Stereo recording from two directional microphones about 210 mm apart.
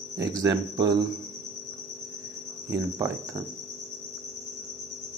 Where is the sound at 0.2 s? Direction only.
15° right (ahead or behind).